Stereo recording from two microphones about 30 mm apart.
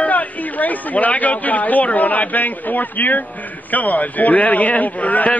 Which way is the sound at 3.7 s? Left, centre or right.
Left.